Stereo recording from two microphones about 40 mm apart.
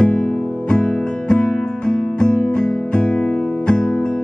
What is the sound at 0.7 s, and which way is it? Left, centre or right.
Music, left.